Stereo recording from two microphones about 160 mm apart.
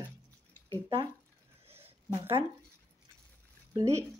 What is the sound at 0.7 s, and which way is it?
Speech, 30° right (ahead or behind).